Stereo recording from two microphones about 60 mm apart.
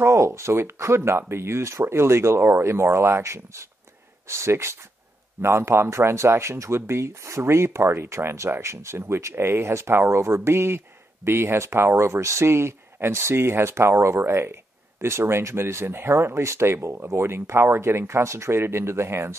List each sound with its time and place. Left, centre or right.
0.0 s speech: right